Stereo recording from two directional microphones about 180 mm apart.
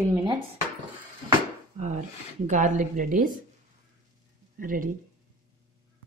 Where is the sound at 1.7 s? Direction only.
45° right (ahead or behind).